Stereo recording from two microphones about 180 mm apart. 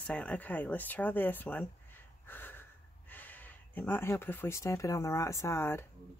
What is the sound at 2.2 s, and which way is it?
Snort, 10° left (ahead or behind).